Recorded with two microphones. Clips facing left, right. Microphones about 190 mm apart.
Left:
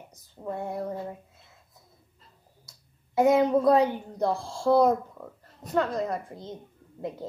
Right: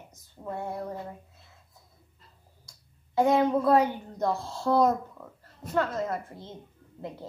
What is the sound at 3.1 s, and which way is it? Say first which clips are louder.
A child's voice: left 2 dB; 20° left (ahead or behind).